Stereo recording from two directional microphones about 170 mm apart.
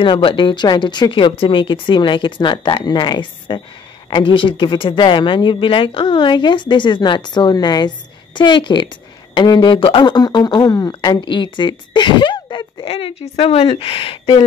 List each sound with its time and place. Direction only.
0.0 s speech: 30° left (ahead or behind)